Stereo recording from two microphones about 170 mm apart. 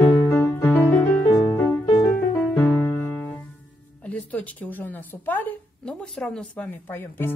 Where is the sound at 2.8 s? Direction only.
10° left (ahead or behind).